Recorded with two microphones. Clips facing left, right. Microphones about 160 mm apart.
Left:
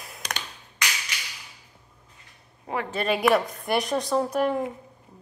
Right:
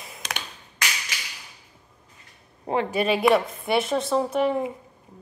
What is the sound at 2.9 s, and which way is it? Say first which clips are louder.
A woman's voice: right 1 dB; 5° right (ahead or behind).